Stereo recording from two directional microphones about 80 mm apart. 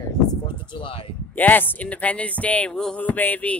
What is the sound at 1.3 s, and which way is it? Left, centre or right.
Speech, left.